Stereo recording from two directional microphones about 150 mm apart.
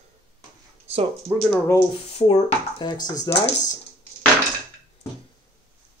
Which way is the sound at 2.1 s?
40° left (ahead or behind).